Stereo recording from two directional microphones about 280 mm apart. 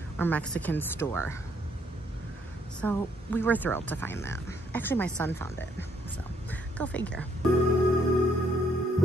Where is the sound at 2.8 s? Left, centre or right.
Centre.